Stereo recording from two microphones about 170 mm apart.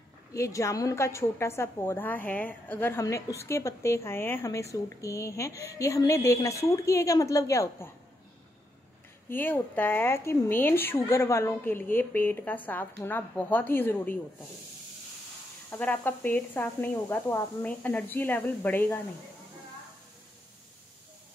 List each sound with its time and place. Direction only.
0.3 s a woman's voice: 20° left (ahead or behind)
9.3 s speech: 10° left (ahead or behind)
15.7 s speech: 10° left (ahead or behind)